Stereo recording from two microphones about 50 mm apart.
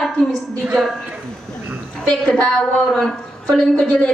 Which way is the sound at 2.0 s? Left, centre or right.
Centre.